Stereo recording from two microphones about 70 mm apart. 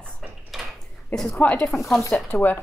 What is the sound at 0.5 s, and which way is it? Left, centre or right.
Mechanisms, centre.